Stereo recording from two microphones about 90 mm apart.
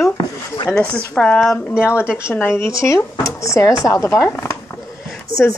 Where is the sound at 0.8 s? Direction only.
10° left (ahead or behind).